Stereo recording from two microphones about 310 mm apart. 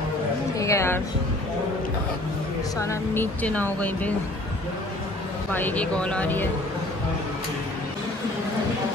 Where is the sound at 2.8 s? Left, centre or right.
Centre.